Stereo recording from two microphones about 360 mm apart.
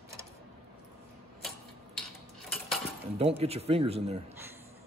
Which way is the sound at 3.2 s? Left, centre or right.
Centre.